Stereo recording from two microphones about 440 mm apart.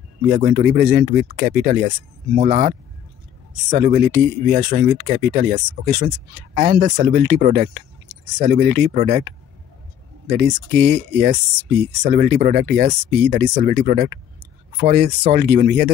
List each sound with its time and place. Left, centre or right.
0.3 s speech: centre
3.7 s speech: centre
10.3 s speech: right